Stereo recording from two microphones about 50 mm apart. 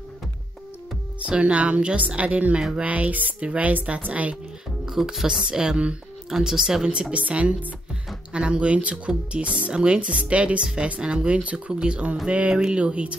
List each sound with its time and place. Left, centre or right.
1.2 s speech: right
4.8 s speech: centre